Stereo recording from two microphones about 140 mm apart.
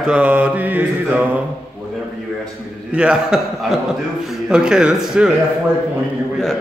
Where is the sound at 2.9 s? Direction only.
5° right (ahead or behind).